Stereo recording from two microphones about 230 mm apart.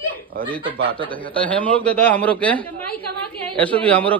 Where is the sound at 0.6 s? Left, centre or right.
Right.